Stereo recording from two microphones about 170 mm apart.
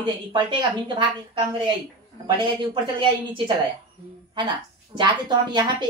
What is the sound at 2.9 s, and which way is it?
Speech, 30° right (ahead or behind).